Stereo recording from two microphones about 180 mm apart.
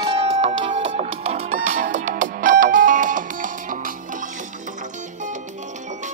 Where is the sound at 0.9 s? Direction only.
40° right (ahead or behind).